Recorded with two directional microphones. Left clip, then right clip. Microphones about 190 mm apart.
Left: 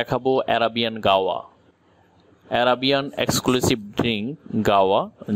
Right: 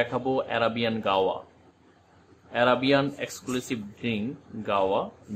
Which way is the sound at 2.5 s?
50° left (ahead or behind).